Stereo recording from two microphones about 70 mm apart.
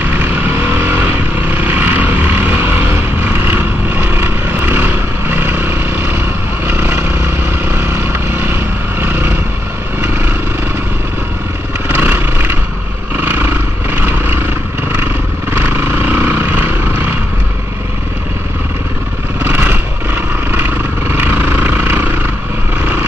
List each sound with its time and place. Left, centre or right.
0.2 s vehicle: right
4.1 s vehicle: right
6.7 s motorcycle: right
7.7 s vehicle: right
11.9 s motorcycle: right
16.1 s vehicle: right
21.2 s vehicle: right